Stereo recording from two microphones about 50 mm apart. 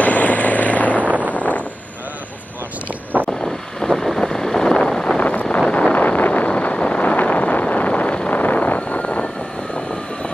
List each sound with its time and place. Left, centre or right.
0.0 s vehicle: left
1.0 s wind noise: right
1.3 s wind noise: left
3.3 s vehicle: centre
5.1 s vehicle: left